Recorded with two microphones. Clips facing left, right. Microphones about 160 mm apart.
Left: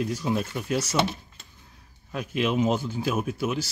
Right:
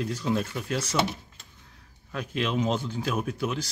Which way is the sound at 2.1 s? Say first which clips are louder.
Left 3 dB; 10° left (ahead or behind).